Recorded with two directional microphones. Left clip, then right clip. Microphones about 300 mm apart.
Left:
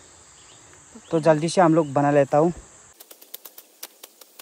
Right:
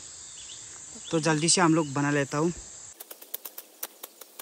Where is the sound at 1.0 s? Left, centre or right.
Centre.